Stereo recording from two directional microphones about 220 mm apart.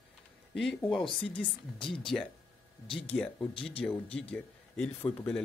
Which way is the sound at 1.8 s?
25° left (ahead or behind).